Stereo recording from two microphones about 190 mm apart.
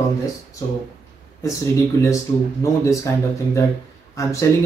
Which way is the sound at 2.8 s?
15° left (ahead or behind).